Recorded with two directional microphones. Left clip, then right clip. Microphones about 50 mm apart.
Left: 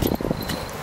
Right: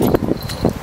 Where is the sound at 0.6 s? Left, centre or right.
Centre.